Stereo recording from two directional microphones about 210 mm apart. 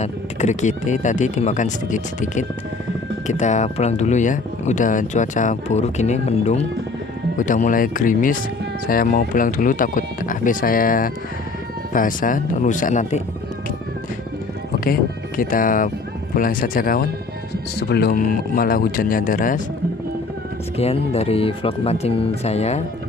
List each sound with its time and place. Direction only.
0.0 s speech: 35° left (ahead or behind)
14.9 s speech: 40° left (ahead or behind)
20.7 s speech: 30° left (ahead or behind)